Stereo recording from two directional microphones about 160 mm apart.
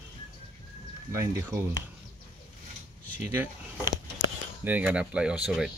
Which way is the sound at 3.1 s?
15° right (ahead or behind).